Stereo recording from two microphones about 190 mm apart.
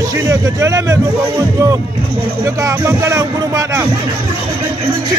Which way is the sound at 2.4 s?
15° right (ahead or behind).